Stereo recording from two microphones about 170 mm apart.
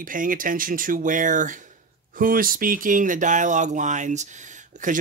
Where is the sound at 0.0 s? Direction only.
55° right (ahead or behind).